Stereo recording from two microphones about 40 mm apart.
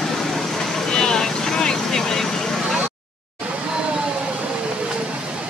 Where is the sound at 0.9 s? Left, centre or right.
Centre.